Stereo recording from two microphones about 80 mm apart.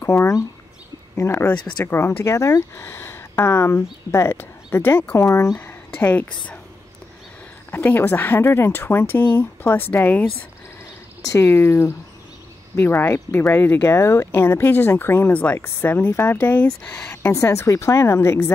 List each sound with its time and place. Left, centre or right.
0.0 s speech: left
1.5 s speech: centre
1.9 s speech: left
5.1 s speech: left
5.9 s speech: centre
7.7 s speech: left
11.2 s speech: left
13.8 s speech: left; by 17.1 s centre
17.2 s speech: left